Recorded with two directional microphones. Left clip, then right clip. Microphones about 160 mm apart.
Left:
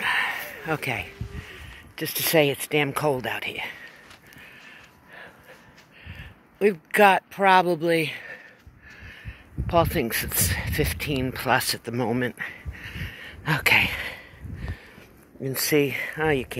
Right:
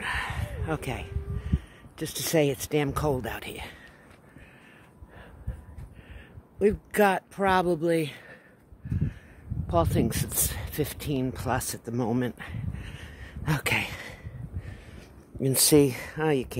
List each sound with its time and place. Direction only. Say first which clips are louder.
0.0 s a sound: left 7 dB; 5° right (ahead or behind)
2.4 s speech: left 4 dB; 15° right (ahead or behind)
4.4 s a sound: left 8 dB; centre (ahead or behind)
6.0 s speech: left 9 dB; centre (ahead or behind)
9.7 s speech: left 4 dB; 10° right (ahead or behind)
12.0 s a sound: left 1 dB; 10° right (ahead or behind)
15.4 s speech: right 2 dB; 60° right (ahead or behind)
15.9 s speech: left 7 dB; 35° right (ahead or behind)
16.2 s speech: left 2 dB; 20° right (ahead or behind)